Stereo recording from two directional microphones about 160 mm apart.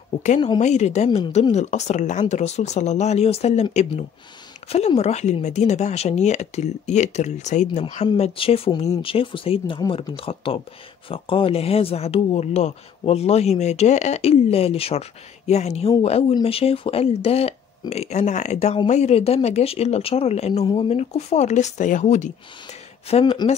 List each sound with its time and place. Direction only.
0.6 s speech: 45° left (ahead or behind)
4.6 s speech: 40° left (ahead or behind)
8.2 s speech: 35° left (ahead or behind)
23.0 s speech: 40° left (ahead or behind)